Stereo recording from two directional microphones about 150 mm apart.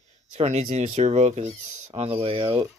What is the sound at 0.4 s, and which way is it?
Speech, 45° right (ahead or behind).